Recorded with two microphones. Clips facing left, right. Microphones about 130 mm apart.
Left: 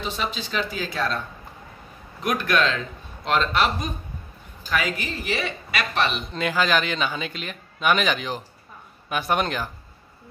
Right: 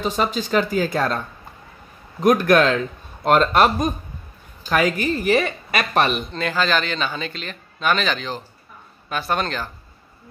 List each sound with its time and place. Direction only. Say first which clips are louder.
0.0 s a woman's voice: right 7 dB; 45° right (ahead or behind)
6.3 s a man's voice: right 1 dB; 10° left (ahead or behind)